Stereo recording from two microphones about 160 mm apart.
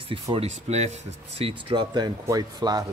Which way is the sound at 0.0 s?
35° right (ahead or behind).